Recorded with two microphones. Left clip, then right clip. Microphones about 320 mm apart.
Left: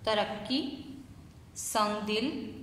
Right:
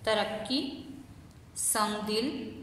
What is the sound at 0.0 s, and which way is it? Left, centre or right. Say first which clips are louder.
Speech: right 1 dB; centre.